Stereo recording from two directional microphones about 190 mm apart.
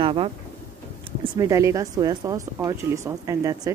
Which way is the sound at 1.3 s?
15° right (ahead or behind).